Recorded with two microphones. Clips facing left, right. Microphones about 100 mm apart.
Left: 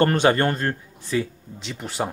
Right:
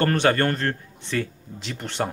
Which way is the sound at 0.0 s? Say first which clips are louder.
Left 2 dB; 20° left (ahead or behind).